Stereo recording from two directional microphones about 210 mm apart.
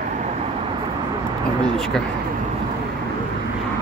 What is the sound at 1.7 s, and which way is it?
Speech, centre (ahead or behind).